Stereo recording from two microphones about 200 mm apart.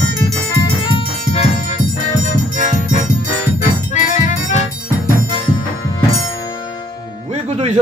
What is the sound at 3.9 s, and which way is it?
Music, 35° left (ahead or behind).